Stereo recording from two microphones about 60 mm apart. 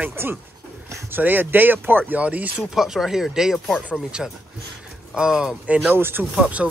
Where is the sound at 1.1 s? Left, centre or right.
Right.